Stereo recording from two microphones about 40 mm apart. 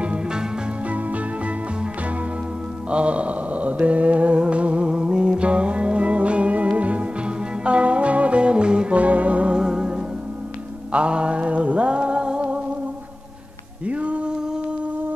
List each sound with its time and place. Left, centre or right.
0.0 s music: right
0.8 s music: right
2.9 s mantra: right
4.4 s music: right
8.9 s music: right
9.6 s music: centre
10.9 s a sound: right
13.8 s music: right